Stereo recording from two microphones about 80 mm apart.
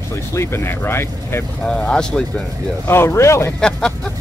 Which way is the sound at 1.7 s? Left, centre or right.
Centre.